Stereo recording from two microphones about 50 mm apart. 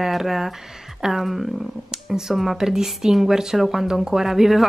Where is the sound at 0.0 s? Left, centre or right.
Centre.